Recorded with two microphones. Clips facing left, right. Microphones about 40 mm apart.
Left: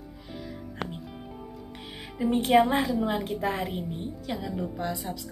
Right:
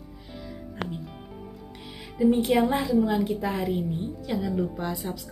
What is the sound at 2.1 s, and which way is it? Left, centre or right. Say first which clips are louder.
Speech: even; left.